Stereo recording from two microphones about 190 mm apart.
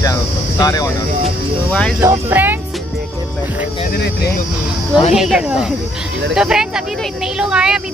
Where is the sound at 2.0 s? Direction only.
10° right (ahead or behind).